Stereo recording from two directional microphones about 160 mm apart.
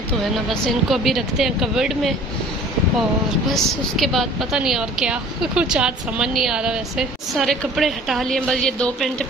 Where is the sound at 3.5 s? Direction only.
Centre (ahead or behind).